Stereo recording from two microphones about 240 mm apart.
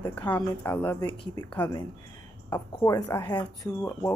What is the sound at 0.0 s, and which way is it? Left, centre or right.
Speech, centre.